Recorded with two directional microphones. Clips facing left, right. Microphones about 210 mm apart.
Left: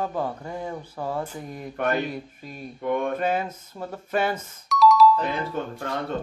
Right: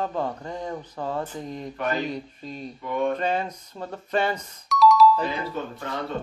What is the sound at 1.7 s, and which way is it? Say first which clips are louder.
Speech: left 3 dB; 55° left (ahead or behind).